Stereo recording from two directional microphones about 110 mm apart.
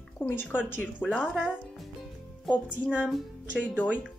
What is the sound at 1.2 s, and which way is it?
Speech, 10° right (ahead or behind).